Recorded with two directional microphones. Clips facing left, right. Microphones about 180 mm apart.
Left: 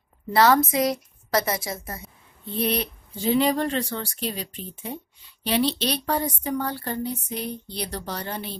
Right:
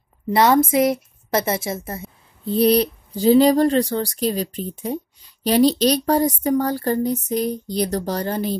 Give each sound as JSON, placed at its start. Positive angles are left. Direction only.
{"t": 0.3, "sound": "a woman's voice", "side_deg": -20}